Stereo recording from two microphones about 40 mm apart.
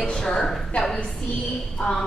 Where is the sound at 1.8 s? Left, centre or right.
Left.